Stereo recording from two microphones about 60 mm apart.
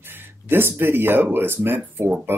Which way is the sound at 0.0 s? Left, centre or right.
Right.